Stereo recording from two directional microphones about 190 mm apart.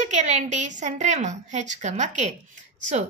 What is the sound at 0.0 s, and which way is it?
A woman's voice, 40° right (ahead or behind).